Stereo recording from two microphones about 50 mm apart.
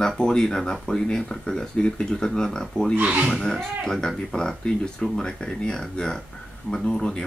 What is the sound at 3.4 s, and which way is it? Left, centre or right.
Speech, centre.